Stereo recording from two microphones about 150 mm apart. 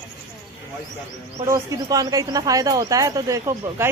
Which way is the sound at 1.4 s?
20° right (ahead or behind).